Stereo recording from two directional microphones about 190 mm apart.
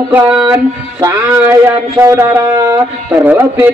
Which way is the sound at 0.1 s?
10° right (ahead or behind).